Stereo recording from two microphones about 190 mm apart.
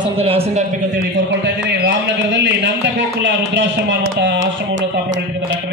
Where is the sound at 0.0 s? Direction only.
30° right (ahead or behind).